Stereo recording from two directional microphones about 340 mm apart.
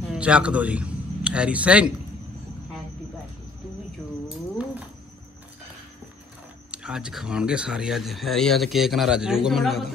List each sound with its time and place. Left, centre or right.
0.1 s a man's voice: centre
4.3 s a sound: centre
6.7 s speech: centre